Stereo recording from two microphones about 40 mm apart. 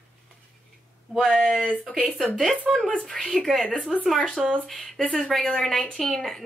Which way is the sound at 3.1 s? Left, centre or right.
Centre.